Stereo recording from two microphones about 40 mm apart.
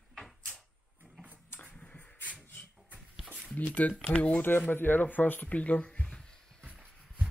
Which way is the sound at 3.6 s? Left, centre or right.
Left.